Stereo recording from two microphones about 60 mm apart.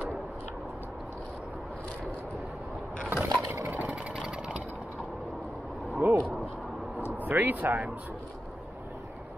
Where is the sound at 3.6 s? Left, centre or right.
Right.